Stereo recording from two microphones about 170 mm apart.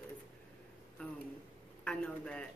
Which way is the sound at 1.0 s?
5° left (ahead or behind).